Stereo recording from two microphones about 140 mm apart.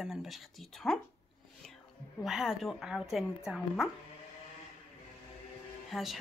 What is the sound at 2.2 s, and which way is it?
A woman's voice, 5° right (ahead or behind).